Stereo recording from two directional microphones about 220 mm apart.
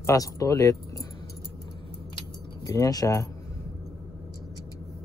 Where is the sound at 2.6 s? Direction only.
15° left (ahead or behind).